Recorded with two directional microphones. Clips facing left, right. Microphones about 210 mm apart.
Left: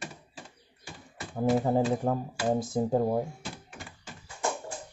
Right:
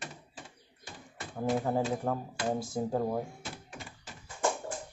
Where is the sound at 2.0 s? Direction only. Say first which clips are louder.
Left 4 dB; 15° left (ahead or behind).